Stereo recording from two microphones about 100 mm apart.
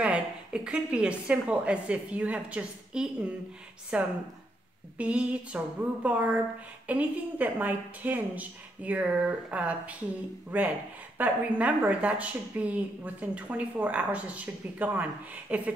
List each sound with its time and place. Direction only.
0.0 s a woman's voice: 10° right (ahead or behind)